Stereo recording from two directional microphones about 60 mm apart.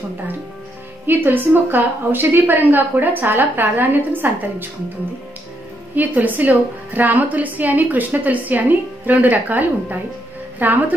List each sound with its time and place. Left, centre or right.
1.0 s a woman's voice: right
5.9 s a woman's voice: right